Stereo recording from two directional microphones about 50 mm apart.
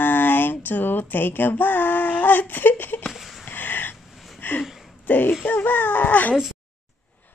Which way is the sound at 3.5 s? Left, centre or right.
Left.